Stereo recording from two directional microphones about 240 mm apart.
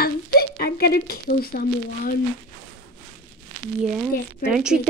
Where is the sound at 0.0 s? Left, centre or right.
Left.